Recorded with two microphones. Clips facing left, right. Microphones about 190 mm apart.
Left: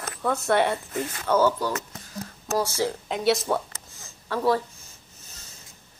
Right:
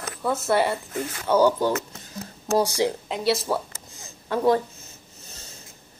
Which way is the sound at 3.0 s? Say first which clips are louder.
Left 1 dB; centre (ahead or behind).